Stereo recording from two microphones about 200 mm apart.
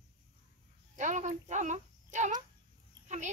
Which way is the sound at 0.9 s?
40° right (ahead or behind).